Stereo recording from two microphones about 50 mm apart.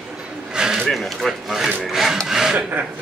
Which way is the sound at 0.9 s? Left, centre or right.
Centre.